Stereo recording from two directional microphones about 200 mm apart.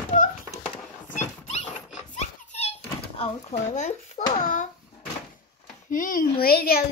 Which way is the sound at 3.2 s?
35° left (ahead or behind).